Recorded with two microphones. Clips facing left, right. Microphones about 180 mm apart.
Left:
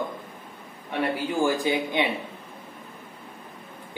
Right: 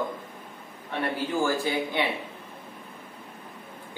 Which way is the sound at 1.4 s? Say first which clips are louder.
Left 2 dB; 15° left (ahead or behind).